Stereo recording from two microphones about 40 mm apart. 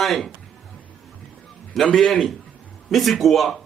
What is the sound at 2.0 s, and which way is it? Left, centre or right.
A man's voice, centre.